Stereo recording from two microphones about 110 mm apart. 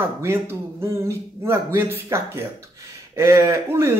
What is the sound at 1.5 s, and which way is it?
A man's voice, 25° right (ahead or behind).